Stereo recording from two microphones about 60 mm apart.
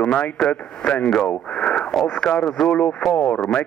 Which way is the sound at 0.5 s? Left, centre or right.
Centre.